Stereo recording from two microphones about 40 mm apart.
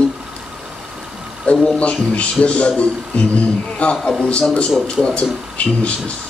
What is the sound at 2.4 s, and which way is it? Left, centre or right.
Speech, left.